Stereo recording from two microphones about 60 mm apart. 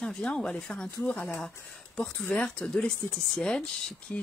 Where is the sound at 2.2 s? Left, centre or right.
Left.